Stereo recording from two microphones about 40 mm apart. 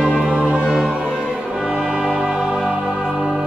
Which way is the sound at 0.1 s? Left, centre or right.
Right.